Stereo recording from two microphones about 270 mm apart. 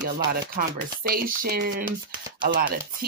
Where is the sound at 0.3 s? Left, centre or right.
Right.